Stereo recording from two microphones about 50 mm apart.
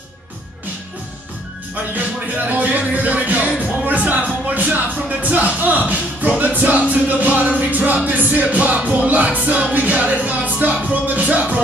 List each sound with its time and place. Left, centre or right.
2.0 s music: right